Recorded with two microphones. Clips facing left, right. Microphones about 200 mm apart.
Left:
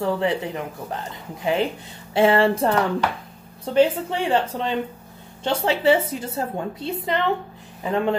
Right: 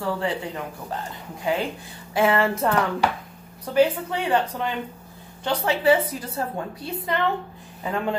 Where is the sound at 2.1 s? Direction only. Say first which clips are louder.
Left 4 dB; 30° left (ahead or behind).